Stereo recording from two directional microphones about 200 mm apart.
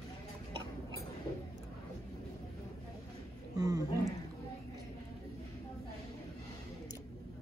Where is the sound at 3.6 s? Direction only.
20° right (ahead or behind).